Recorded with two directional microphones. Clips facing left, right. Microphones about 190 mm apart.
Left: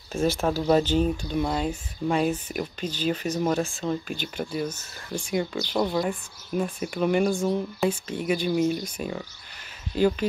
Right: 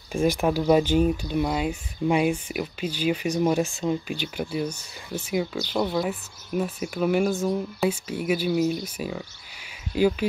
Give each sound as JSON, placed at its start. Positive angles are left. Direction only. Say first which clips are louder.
{"t": 0.1, "sound": "speech", "louder": "right 2 dB", "side_deg": -15}